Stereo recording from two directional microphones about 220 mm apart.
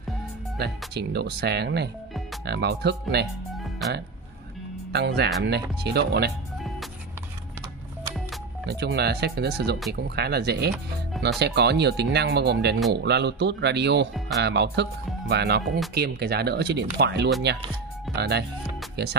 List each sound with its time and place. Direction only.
0.9 s speech: 45° right (ahead or behind)
4.9 s speech: 50° right (ahead or behind)
8.6 s speech: 50° right (ahead or behind)